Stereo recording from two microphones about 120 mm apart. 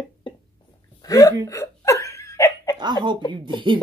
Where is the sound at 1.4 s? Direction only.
25° left (ahead or behind).